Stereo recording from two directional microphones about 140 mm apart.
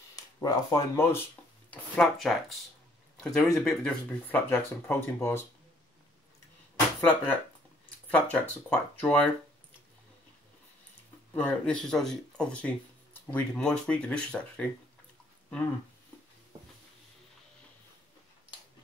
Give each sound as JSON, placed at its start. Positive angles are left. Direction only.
{"t": 0.1, "sound": "speech", "side_deg": 25}
{"t": 1.7, "sound": "speech", "side_deg": 5}
{"t": 7.0, "sound": "speech", "side_deg": 10}
{"t": 11.3, "sound": "speech", "side_deg": 10}